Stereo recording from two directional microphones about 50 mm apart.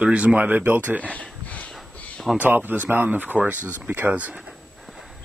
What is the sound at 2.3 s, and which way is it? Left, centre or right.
Speech, right.